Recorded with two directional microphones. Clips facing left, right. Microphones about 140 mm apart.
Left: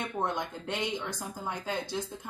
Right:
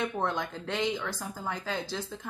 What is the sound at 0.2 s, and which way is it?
Speech, 10° left (ahead or behind).